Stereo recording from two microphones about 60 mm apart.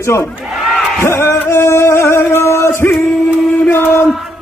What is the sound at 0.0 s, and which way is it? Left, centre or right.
Music, left.